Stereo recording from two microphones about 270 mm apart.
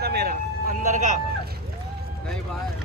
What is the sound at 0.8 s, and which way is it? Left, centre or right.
Speech, right.